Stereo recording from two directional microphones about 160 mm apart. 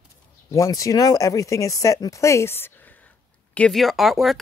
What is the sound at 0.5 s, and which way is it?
Speech, 20° left (ahead or behind).